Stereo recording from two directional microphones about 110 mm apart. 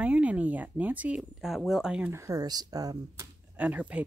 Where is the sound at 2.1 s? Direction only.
30° right (ahead or behind).